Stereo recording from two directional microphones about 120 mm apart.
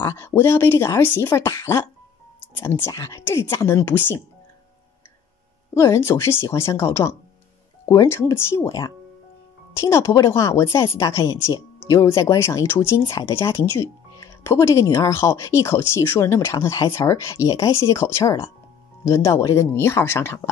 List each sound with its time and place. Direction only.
0.0 s speech: 20° left (ahead or behind)
5.8 s speech: 20° left (ahead or behind)